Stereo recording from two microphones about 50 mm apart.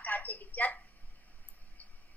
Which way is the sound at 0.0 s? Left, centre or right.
Left.